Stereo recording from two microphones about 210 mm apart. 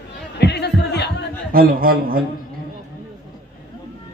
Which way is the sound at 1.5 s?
45° right (ahead or behind).